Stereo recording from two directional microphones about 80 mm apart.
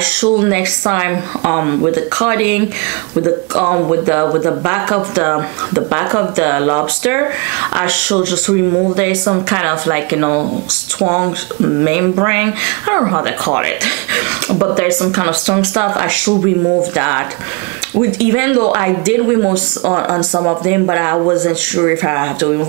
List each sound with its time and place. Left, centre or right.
0.0 s speech: centre